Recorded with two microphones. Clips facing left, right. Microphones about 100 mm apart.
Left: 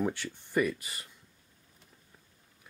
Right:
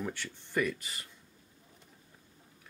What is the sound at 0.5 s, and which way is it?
Speech, 5° left (ahead or behind).